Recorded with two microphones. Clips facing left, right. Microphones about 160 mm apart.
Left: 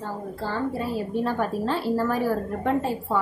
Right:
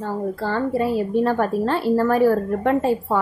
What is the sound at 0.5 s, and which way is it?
A woman's voice, 70° right (ahead or behind).